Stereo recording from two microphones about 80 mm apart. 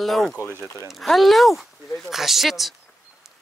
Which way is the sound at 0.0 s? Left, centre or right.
Centre.